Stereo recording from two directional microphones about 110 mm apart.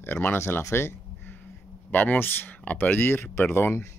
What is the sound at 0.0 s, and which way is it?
Speech, 20° left (ahead or behind).